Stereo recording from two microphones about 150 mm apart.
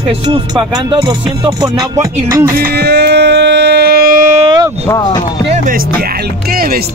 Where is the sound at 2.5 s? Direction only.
80° right; by 4.4 s 60° right (ahead or behind).